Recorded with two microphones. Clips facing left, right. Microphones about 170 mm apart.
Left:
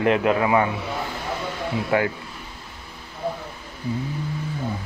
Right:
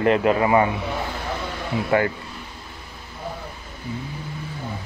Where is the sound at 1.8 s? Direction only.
5° left (ahead or behind).